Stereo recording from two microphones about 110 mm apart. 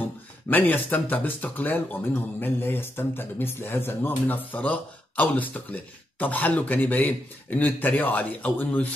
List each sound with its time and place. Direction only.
0.5 s speech: 15° left (ahead or behind)